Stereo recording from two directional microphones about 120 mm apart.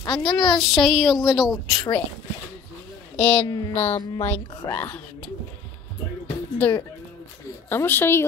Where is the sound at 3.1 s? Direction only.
15° left (ahead or behind).